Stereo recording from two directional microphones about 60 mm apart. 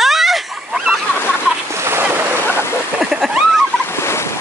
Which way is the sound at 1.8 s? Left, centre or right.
Right.